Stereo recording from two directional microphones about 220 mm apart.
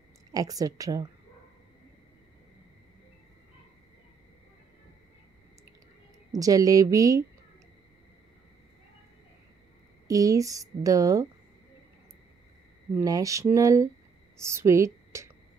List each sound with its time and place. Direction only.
0.3 s speech: 15° right (ahead or behind)
6.3 s speech: 15° right (ahead or behind)
10.0 s speech: 15° right (ahead or behind)
12.9 s a woman's voice: 15° right (ahead or behind)